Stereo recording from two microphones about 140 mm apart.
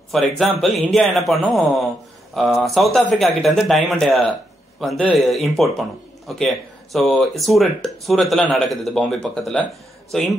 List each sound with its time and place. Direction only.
0.1 s speech: 5° left (ahead or behind)